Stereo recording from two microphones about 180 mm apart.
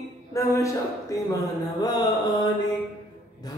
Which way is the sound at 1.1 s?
20° left (ahead or behind).